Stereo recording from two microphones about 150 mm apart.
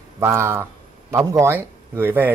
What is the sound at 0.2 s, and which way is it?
A man's voice, 15° right (ahead or behind).